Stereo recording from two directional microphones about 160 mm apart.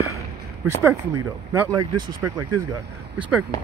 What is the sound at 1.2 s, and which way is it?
Speech, 15° right (ahead or behind).